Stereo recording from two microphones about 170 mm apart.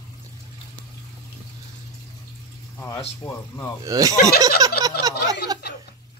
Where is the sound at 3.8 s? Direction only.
20° right (ahead or behind).